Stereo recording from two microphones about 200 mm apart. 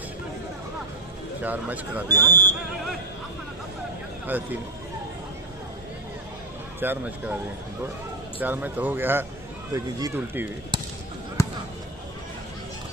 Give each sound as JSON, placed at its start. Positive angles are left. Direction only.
{"t": 1.4, "sound": "speech", "side_deg": -10}
{"t": 6.8, "sound": "speech", "side_deg": -10}
{"t": 8.4, "sound": "speech", "side_deg": -10}
{"t": 10.7, "sound": "basketball bounce", "side_deg": -25}
{"t": 11.4, "sound": "basketball bounce", "side_deg": 15}